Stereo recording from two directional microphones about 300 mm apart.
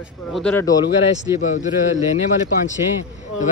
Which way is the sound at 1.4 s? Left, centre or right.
Left.